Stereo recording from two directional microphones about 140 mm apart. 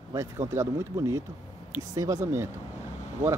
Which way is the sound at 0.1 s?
20° right (ahead or behind).